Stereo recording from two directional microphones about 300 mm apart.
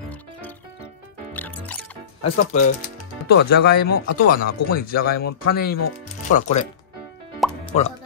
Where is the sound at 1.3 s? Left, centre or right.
Centre.